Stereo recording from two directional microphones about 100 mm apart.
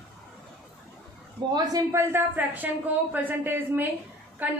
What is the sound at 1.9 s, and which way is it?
Speech, 25° right (ahead or behind).